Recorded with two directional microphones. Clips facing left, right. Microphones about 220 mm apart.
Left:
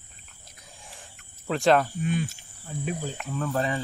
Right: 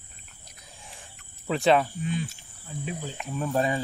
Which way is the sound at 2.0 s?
55° left (ahead or behind).